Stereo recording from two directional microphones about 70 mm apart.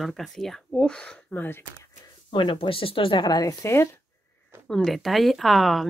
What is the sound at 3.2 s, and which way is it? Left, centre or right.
Speech, left.